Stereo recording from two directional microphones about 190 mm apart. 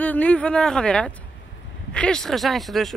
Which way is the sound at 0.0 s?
10° left (ahead or behind).